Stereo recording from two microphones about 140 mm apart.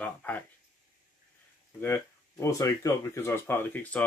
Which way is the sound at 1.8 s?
15° left (ahead or behind).